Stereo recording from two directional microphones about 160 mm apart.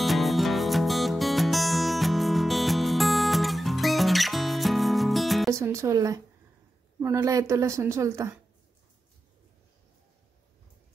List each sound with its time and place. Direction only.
0.0 s music: centre (ahead or behind)
5.5 s a woman's voice: 20° right (ahead or behind)